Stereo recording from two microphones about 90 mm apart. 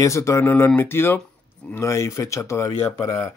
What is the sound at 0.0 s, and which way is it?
Speech, 35° left (ahead or behind).